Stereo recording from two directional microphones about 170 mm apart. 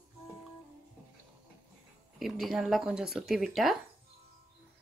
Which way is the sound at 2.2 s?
Centre (ahead or behind).